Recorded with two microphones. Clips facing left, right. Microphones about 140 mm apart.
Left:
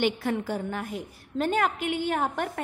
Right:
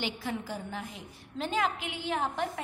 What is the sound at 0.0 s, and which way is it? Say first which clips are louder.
A woman's voice: left 8 dB; 55° left (ahead or behind).